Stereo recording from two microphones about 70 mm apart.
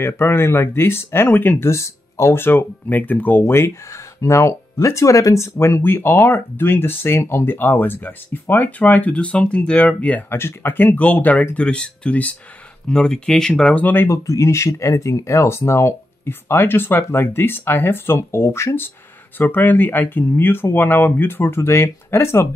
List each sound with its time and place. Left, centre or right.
0.0 s speech: left
1.7 s speech: left
2.4 s speech: left
3.4 s speech: left
10.3 s speech: left; by 13.8 s centre
13.8 s speech: left
14.1 s speech: left
19.3 s speech: left